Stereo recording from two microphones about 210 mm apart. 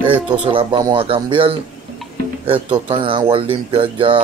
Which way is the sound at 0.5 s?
25° right (ahead or behind).